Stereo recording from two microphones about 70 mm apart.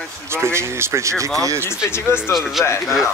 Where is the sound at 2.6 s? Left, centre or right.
Left.